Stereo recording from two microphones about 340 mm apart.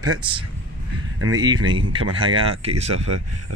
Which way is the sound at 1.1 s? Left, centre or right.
Right.